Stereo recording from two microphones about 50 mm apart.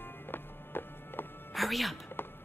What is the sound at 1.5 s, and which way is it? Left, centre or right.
Music, centre.